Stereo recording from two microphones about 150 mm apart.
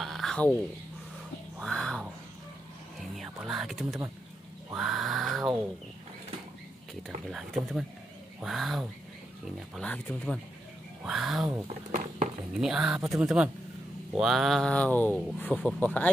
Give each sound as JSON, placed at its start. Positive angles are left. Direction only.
{"t": 0.0, "sound": "a sound", "side_deg": 0}
{"t": 1.6, "sound": "a sound", "side_deg": 5}
{"t": 3.2, "sound": "speech", "side_deg": 0}
{"t": 8.4, "sound": "mantra", "side_deg": 0}
{"t": 9.8, "sound": "speech", "side_deg": 10}
{"t": 11.1, "sound": "mantra", "side_deg": 0}
{"t": 11.9, "sound": "a sound", "side_deg": -55}
{"t": 12.5, "sound": "mantra", "side_deg": -5}
{"t": 15.3, "sound": "speech", "side_deg": 10}